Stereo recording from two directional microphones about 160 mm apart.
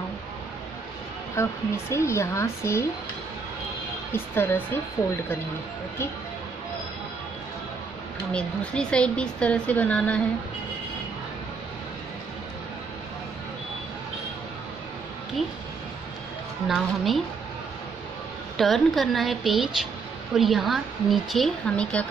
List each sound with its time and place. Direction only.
1.3 s a woman's voice: 15° left (ahead or behind)
4.1 s a woman's voice: 15° left (ahead or behind)
8.3 s a woman's voice: 5° left (ahead or behind)
16.6 s a woman's voice: centre (ahead or behind)
18.6 s a woman's voice: centre (ahead or behind)